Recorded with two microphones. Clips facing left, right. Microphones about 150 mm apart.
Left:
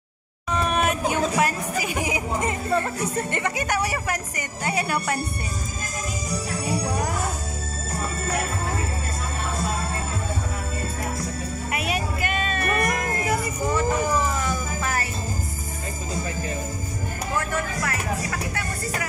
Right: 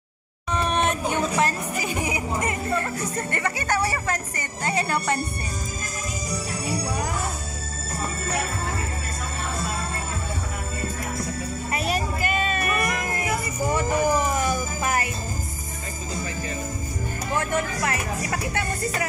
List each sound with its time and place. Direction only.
0.5 s a sound: 5° left (ahead or behind)
1.4 s a woman's voice: 15° left (ahead or behind)
11.7 s music: centre (ahead or behind)
12.6 s music: 45° left (ahead or behind)
13.7 s music: 15° right (ahead or behind)
17.4 s speech: 25° right (ahead or behind)